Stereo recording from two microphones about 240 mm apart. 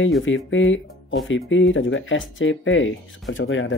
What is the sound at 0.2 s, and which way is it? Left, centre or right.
Speech, left.